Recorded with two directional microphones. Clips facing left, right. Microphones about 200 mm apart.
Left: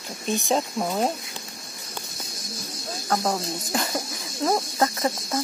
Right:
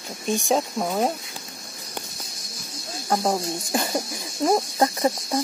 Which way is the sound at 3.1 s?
15° right (ahead or behind).